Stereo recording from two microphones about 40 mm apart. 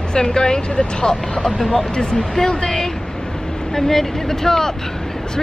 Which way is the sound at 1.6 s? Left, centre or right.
Centre.